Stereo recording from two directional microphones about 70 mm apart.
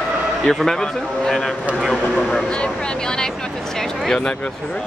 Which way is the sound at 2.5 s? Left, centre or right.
Centre.